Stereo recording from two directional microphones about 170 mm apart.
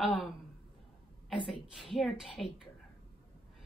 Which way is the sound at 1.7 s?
Centre (ahead or behind).